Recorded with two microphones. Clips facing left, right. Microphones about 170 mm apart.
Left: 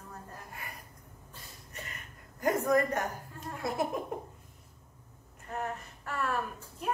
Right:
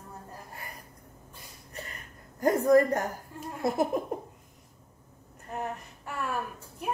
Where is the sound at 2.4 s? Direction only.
35° right (ahead or behind).